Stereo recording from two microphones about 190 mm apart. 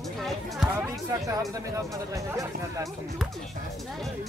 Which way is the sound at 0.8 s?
15° right (ahead or behind).